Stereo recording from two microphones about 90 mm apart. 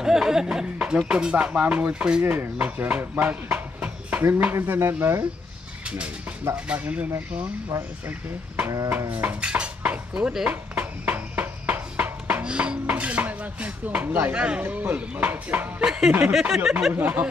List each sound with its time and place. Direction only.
0.0 s speech: 5° right (ahead or behind); by 4.9 s 30° right (ahead or behind)
6.5 s speech: 15° right (ahead or behind)
7.7 s speech: 30° right (ahead or behind)
9.1 s dishes: 15° right (ahead or behind)
14.3 s speech: 10° right (ahead or behind)
15.8 s speech: 5° right (ahead or behind)
16.1 s speech: 15° right (ahead or behind)
16.9 s speech: 20° right (ahead or behind)